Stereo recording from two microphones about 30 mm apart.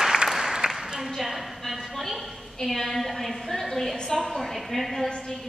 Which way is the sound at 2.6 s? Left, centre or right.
Centre.